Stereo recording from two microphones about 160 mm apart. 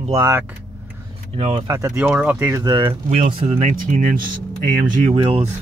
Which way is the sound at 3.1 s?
45° right (ahead or behind).